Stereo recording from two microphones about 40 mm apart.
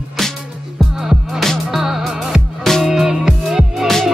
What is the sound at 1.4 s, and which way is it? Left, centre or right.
Music, centre.